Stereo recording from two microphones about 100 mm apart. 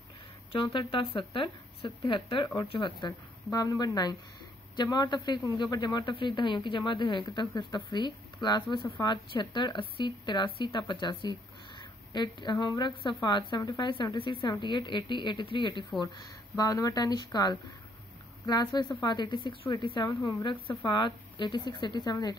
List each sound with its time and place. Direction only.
0.7 s speech: 55° left (ahead or behind)
2.4 s speech: 40° left (ahead or behind)
2.7 s speech: 50° left (ahead or behind)
3.5 s speech: 40° left (ahead or behind)
16.5 s speech: 35° left (ahead or behind)